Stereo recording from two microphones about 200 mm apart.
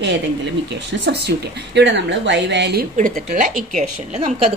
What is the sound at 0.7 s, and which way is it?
Speech, 60° right (ahead or behind).